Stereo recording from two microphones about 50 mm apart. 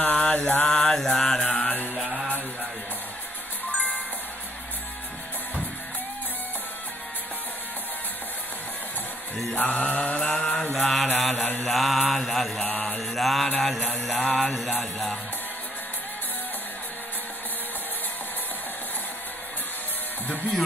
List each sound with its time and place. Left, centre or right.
0.0 s mantra: left
0.7 s mantra: centre
9.5 s mantra: left
10.3 s mantra: centre
12.6 s mantra: left
12.9 s music: centre